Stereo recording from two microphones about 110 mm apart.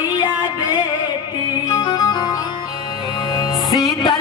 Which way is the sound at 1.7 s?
35° left (ahead or behind).